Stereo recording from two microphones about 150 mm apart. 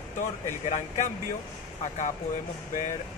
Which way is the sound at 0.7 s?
50° left (ahead or behind).